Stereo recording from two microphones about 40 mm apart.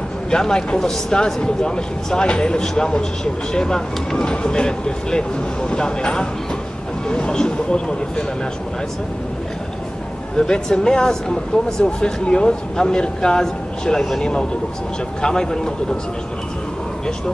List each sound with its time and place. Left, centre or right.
0.3 s speech: centre
2.6 s speech: centre
10.3 s speech: centre
15.2 s speech: centre